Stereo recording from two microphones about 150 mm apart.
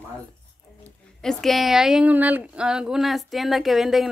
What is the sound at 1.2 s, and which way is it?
A woman's voice, centre (ahead or behind).